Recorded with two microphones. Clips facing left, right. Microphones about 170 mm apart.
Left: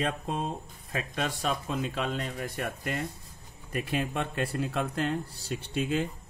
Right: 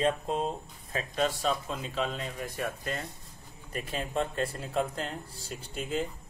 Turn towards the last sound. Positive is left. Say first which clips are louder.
# left 4 dB
turn(degrees=75)  # may be behind; listen again after turning